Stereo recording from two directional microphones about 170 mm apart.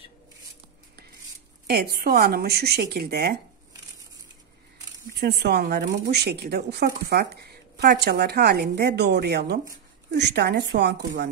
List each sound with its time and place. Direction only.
1.7 s speech: 65° right (ahead or behind)
4.9 s speech: 75° right (ahead or behind)
10.1 s a woman's voice: 85° right